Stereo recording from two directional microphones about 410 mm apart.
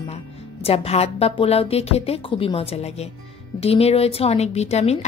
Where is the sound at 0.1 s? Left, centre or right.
Centre.